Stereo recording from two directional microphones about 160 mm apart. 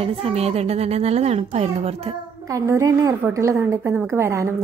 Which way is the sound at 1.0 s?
40° right (ahead or behind).